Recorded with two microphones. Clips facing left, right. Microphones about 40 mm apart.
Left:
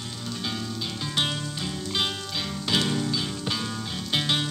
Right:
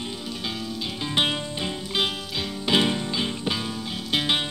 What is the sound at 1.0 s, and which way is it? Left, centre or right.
Music, right.